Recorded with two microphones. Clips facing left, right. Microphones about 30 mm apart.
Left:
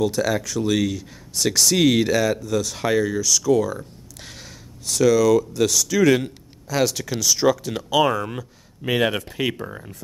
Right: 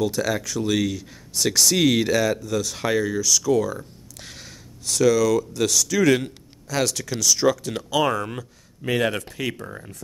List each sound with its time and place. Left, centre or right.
0.0 s speech: centre
8.8 s speech: centre